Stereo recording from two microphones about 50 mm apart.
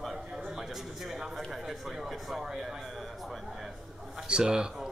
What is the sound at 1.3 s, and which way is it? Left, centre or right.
Speech, centre.